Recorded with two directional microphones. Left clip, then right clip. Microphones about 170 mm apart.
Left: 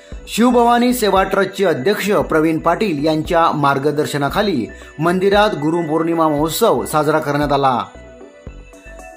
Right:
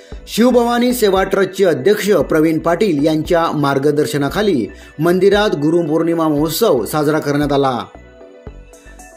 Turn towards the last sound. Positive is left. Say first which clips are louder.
# even
turn(degrees=-30)  # may be behind; listen again after turning